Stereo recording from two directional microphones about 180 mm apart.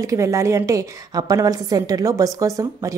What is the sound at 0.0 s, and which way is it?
A woman's voice, 15° right (ahead or behind).